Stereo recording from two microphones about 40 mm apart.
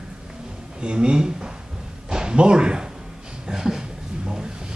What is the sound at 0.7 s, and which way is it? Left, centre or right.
Speech, right.